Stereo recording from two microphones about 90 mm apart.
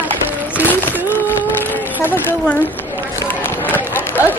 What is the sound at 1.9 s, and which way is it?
Speech, 20° left (ahead or behind).